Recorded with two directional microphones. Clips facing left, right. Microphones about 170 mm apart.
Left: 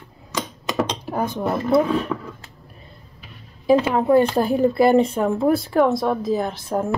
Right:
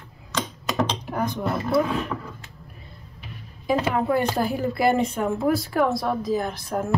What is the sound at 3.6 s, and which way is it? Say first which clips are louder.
A woman's voice: left 6 dB; 30° left (ahead or behind).